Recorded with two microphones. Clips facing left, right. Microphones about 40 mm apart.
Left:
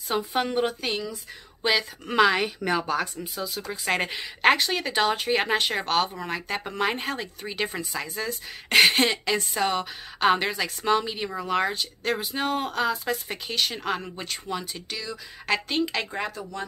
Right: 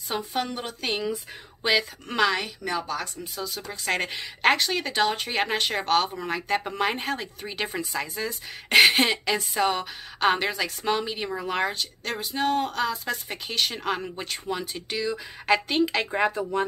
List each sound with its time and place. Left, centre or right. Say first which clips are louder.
0.4 s speech: left 8 dB; left
1.6 s a woman's voice: right 1 dB; centre
2.1 s a woman's voice: left 3 dB; centre
2.4 s speech: left 4 dB; left
3.3 s a woman's voice: left 2 dB; centre
14.9 s speech: right 8 dB; centre
15.4 s a woman's voice: right 3 dB; centre
16.1 s speech: right 7 dB; right